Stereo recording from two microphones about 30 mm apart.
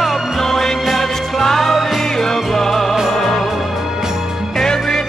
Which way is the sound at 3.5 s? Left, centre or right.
Centre.